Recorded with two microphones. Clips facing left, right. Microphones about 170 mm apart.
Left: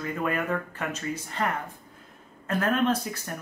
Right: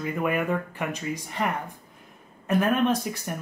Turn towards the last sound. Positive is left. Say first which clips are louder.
# right 1 dB
turn(degrees=-15)  # may be behind; listen again after turning